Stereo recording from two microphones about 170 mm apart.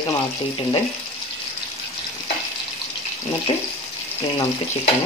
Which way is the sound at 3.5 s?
30° left (ahead or behind).